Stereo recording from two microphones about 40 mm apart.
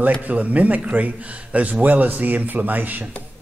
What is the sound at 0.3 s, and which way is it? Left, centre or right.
A man's voice, right.